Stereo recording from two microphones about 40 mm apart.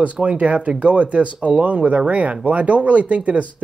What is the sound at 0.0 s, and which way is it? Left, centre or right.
Speech, right.